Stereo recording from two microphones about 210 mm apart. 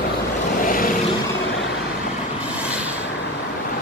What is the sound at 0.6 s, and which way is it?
Vehicle, 40° left (ahead or behind).